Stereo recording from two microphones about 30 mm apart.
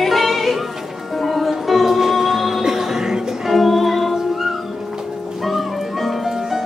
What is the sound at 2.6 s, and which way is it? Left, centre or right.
Music, centre.